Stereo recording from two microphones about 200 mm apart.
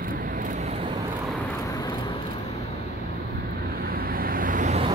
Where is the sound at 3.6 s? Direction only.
45° right (ahead or behind).